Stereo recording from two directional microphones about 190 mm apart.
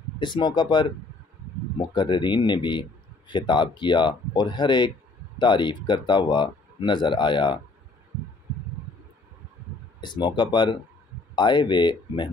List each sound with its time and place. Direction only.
0.2 s a man's voice: 25° left (ahead or behind)
9.9 s a man's voice: 25° left (ahead or behind)